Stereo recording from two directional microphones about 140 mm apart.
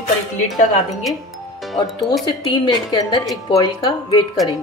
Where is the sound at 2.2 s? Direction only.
35° left (ahead or behind).